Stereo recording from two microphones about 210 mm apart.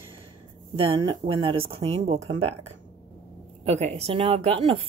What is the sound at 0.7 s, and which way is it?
A woman's voice, 25° right (ahead or behind).